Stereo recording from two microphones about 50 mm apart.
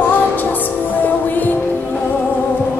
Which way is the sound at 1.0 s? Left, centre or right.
Left.